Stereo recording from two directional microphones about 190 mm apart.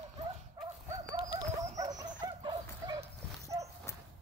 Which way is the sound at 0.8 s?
20° right (ahead or behind).